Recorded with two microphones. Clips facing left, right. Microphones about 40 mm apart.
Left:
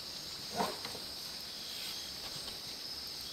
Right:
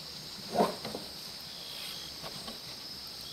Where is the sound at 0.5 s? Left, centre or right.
Centre.